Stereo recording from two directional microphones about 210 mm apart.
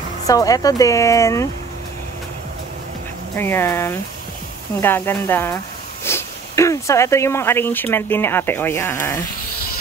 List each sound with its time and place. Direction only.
0.3 s speech: 15° left (ahead or behind)
3.3 s speech: 10° left (ahead or behind)